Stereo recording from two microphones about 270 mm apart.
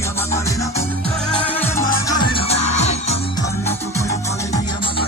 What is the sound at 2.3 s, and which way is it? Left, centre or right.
Music, left.